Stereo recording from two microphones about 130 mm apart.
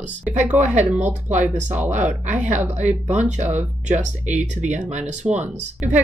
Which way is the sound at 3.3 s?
60° right (ahead or behind).